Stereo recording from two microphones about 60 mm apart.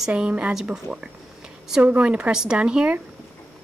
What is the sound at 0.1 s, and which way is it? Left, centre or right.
Speech, right.